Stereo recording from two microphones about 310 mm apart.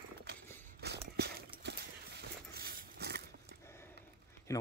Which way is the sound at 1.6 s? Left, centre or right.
Right.